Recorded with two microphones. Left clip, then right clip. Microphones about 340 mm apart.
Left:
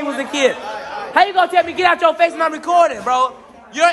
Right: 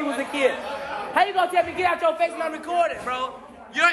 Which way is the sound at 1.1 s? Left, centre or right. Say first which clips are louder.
Left 7 dB; left.